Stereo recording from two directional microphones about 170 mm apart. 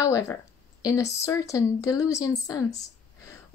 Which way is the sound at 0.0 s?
20° left (ahead or behind).